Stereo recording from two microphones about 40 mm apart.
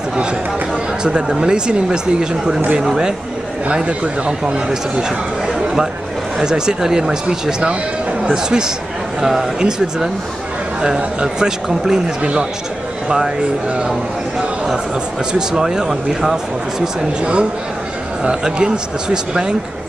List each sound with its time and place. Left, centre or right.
1.4 s a man's voice: centre
3.7 s a man's voice: right
6.4 s a man's voice: centre
12.2 s speech: right
15.9 s speech: centre
17.2 s a man's voice: right